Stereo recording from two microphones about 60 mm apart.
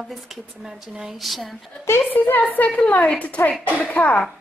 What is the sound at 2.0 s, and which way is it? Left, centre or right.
A woman's voice, left.